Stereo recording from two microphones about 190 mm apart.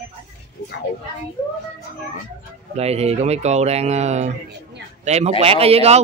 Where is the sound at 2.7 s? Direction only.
35° right (ahead or behind).